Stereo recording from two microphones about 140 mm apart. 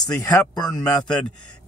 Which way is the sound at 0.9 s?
5° left (ahead or behind).